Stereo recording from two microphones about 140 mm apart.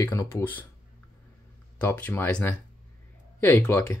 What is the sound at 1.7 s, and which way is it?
Speech, 15° left (ahead or behind).